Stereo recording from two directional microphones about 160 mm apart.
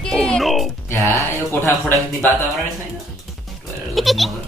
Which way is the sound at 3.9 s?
Centre (ahead or behind).